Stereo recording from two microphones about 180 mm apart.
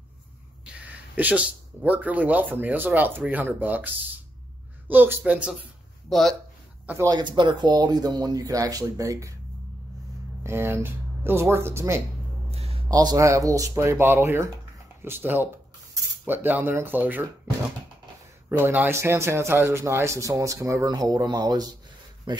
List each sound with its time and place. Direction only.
1.1 s speech: 10° right (ahead or behind)
6.9 s speech: 20° right (ahead or behind)
10.4 s speech: 15° right (ahead or behind)
12.4 s a sound: 35° right (ahead or behind)
12.8 s speech: 20° right (ahead or behind)
18.5 s speech: 10° right (ahead or behind)